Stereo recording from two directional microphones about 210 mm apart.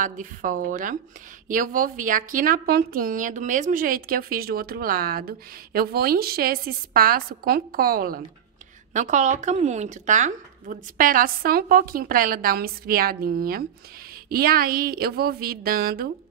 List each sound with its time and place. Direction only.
0.0 s a woman's voice: 40° right (ahead or behind)